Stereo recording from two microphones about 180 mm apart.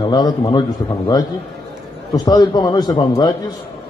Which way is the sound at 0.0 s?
25° left (ahead or behind).